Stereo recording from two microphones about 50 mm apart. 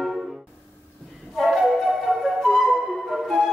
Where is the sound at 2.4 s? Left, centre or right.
Centre.